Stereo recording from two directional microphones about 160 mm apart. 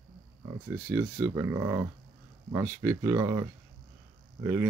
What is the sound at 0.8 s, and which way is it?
Speech, 15° right (ahead or behind).